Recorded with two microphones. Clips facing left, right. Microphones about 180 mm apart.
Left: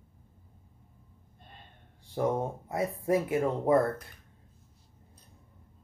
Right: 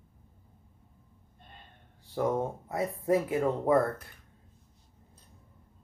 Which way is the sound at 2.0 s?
20° left (ahead or behind).